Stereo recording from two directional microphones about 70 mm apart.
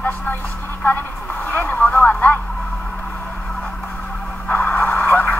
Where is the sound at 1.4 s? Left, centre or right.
Left.